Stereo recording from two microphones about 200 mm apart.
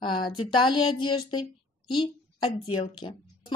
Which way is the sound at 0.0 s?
25° left (ahead or behind).